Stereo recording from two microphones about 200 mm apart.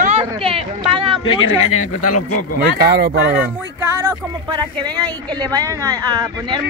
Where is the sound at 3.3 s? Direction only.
10° right (ahead or behind).